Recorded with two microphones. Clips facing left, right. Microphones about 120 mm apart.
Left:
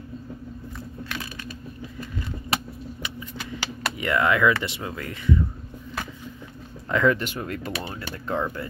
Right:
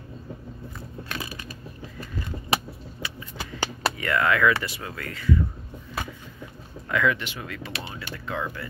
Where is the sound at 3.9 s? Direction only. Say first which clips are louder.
Left 2 dB; 20° left (ahead or behind).